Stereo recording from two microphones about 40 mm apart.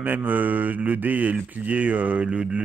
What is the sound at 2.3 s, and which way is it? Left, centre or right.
Mantra, right.